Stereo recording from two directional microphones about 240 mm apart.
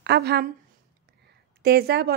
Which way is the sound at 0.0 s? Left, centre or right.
Right.